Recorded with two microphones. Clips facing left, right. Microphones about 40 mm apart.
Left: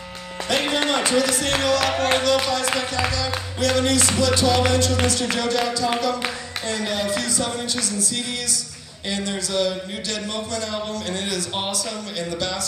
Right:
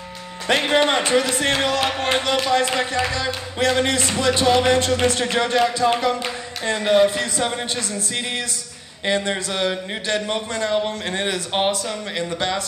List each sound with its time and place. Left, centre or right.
0.5 s speech: right
9.0 s speech: right